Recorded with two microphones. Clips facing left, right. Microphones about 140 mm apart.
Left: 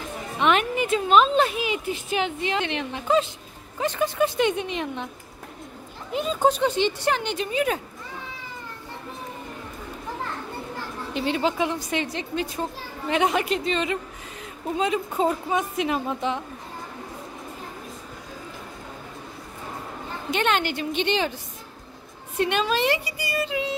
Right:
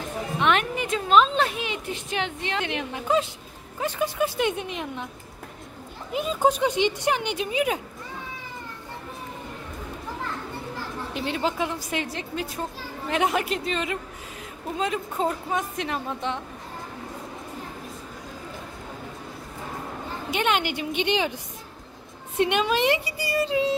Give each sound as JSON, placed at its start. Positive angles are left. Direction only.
{"t": 0.4, "sound": "a woman's voice", "side_deg": 0}
{"t": 2.6, "sound": "a woman's voice", "side_deg": -5}
{"t": 6.1, "sound": "speech", "side_deg": -5}
{"t": 11.1, "sound": "a woman's voice", "side_deg": 0}
{"t": 20.2, "sound": "speech", "side_deg": -10}
{"t": 22.4, "sound": "speech", "side_deg": -15}
{"t": 23.0, "sound": "speech", "side_deg": -30}